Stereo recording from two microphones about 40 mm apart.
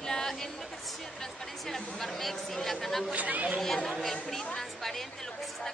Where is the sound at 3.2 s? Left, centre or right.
Right.